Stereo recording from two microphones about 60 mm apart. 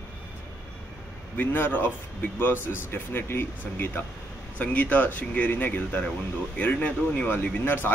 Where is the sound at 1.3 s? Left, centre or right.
Left.